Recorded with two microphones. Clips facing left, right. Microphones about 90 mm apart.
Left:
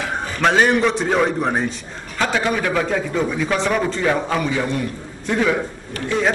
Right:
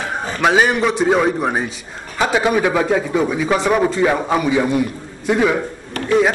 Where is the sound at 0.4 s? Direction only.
5° right (ahead or behind).